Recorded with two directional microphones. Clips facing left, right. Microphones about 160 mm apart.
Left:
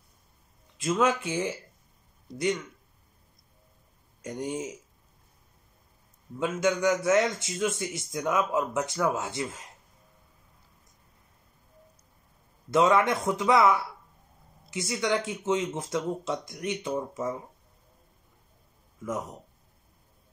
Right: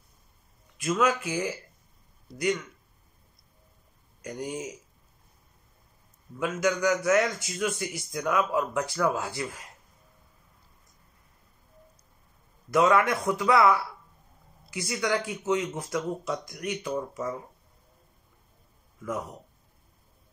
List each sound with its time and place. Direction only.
0.7 s a man's voice: 25° left (ahead or behind)
4.2 s a man's voice: 25° left (ahead or behind)
6.4 s a man's voice: 25° left (ahead or behind)
12.7 s a man's voice: 25° left (ahead or behind)